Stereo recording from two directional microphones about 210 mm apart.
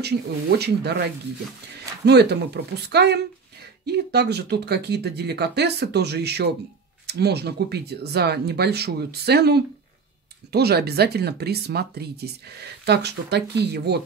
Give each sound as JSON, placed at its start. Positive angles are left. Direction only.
{"t": 0.0, "sound": "speech", "side_deg": -50}